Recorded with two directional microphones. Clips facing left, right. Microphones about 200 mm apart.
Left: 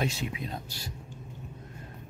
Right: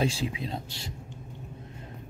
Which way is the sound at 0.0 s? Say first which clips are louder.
Right 3 dB; 30° right (ahead or behind).